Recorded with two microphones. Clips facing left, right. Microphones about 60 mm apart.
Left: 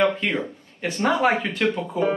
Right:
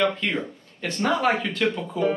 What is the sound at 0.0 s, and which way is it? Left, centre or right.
Speech, centre.